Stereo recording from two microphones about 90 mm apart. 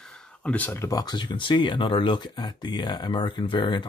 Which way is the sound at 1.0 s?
55° left (ahead or behind).